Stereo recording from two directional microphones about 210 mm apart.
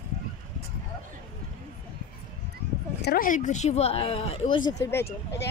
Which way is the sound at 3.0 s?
45° left (ahead or behind).